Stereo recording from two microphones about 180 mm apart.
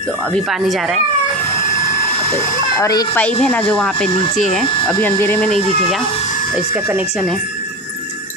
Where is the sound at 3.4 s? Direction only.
5° left (ahead or behind).